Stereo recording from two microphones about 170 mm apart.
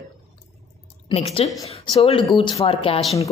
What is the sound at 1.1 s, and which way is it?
Speech, 35° left (ahead or behind).